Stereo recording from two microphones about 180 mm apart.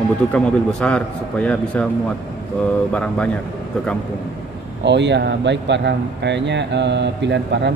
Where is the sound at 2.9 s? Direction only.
5° left (ahead or behind).